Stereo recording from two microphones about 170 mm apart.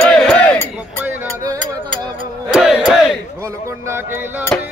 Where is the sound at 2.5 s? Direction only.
5° right (ahead or behind).